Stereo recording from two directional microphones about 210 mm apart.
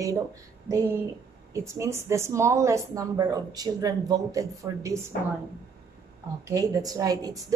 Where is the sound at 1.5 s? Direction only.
15° right (ahead or behind).